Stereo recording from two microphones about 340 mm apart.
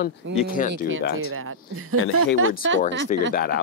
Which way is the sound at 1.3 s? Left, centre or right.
Right.